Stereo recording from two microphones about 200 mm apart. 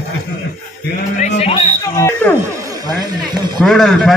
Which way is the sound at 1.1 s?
35° left (ahead or behind).